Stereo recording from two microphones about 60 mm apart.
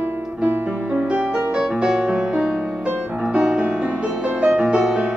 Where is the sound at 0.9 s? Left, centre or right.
Centre.